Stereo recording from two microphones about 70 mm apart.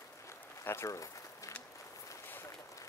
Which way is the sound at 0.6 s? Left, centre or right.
Left.